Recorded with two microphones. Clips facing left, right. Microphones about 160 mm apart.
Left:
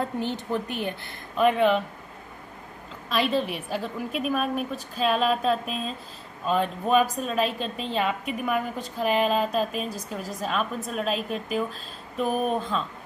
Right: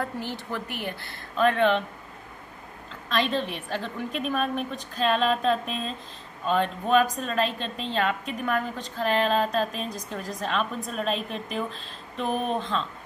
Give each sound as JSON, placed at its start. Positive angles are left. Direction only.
{"t": 0.0, "sound": "speech", "side_deg": 20}
{"t": 3.1, "sound": "a woman's voice", "side_deg": 10}